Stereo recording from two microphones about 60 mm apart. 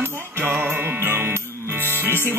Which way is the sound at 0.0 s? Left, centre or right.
Right.